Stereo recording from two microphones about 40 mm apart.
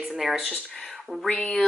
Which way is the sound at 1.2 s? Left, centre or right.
Left.